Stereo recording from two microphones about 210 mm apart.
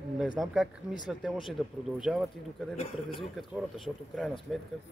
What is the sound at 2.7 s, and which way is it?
Speech, 25° left (ahead or behind).